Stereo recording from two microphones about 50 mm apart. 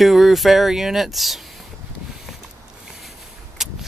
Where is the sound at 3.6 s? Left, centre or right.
Centre.